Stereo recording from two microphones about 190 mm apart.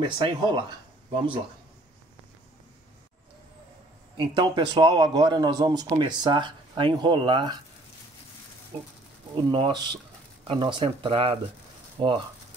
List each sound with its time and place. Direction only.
0.0 s speech: 25° right (ahead or behind)
4.2 s speech: 25° right (ahead or behind)
8.7 s speech: 30° right (ahead or behind)